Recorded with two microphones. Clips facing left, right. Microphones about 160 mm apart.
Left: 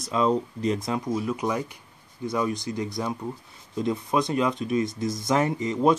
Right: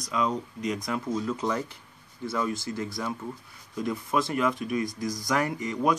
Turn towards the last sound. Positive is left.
turn(degrees=25)  # may be behind; listen again after turning